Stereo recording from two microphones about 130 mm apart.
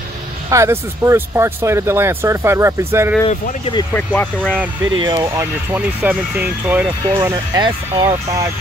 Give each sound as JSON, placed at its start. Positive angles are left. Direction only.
{"t": 0.5, "sound": "speech", "side_deg": -25}
{"t": 3.9, "sound": "speech", "side_deg": 10}
{"t": 4.9, "sound": "speech", "side_deg": -35}
{"t": 5.8, "sound": "speech", "side_deg": -10}
{"t": 7.5, "sound": "speech", "side_deg": -35}
{"t": 8.0, "sound": "speech", "side_deg": -25}